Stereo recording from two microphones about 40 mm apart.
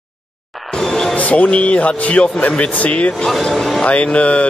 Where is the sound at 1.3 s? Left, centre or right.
Left.